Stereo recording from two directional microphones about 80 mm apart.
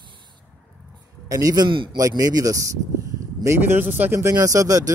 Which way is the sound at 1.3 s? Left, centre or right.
Right.